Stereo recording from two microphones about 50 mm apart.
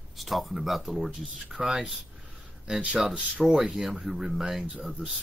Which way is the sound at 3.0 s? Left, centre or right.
Centre.